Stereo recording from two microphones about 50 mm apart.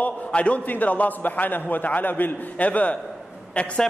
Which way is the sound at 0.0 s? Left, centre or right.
Left.